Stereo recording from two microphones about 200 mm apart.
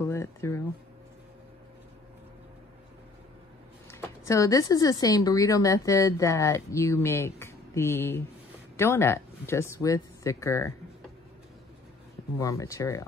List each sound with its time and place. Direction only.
0.0 s a sound: 15° left (ahead or behind)
3.9 s speech: 15° left (ahead or behind)
12.4 s speech: 15° left (ahead or behind)